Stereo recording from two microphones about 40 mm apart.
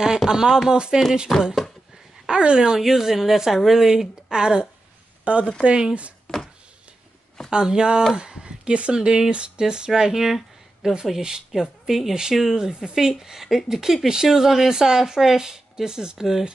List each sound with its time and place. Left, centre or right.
0.0 s speech: centre
1.3 s speech: centre
2.2 s speech: right
2.8 s speech: centre
5.2 s speech: right
5.6 s speech: right
7.5 s speech: centre
8.2 s a sound: centre
8.6 s speech: right
8.9 s speech: centre